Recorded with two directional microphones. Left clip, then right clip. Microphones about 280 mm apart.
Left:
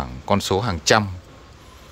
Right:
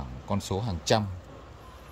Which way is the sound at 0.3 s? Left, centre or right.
Centre.